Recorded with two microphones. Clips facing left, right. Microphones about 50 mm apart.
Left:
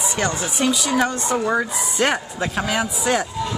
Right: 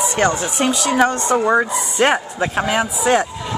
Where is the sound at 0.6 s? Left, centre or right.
Right.